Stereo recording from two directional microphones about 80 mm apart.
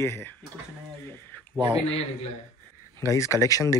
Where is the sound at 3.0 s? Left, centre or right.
Left.